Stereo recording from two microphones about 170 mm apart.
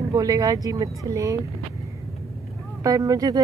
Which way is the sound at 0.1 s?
20° right (ahead or behind).